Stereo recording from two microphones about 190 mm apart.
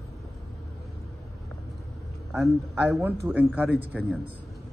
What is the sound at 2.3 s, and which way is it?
A man's voice, 15° right (ahead or behind).